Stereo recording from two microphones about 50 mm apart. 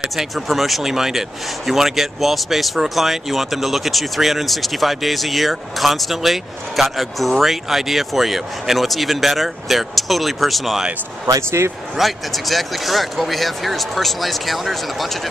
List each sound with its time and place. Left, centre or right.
0.0 s speech: centre
11.3 s speech: right
12.0 s speech: centre